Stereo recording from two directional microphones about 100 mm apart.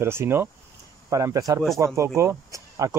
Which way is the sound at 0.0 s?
25° right (ahead or behind).